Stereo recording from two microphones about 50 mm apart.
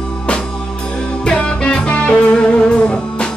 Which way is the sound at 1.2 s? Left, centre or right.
Centre.